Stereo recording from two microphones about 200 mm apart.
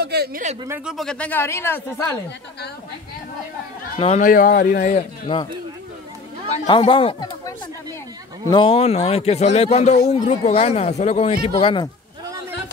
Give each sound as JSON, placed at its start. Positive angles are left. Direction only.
{"t": 0.0, "sound": "speech", "side_deg": -55}
{"t": 0.7, "sound": "speech", "side_deg": 0}
{"t": 4.0, "sound": "speech", "side_deg": 35}
{"t": 5.3, "sound": "speech", "side_deg": 25}
{"t": 6.5, "sound": "speech", "side_deg": 30}